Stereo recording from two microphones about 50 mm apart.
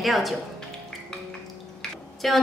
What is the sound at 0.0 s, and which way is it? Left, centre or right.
Speech, centre.